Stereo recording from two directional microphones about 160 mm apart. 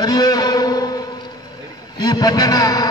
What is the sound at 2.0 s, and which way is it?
Speech, 25° left (ahead or behind).